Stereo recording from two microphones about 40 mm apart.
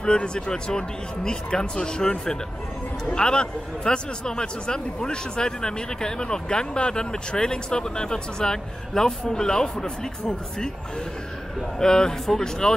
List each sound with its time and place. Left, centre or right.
0.0 s a man's voice: left
11.8 s a man's voice: centre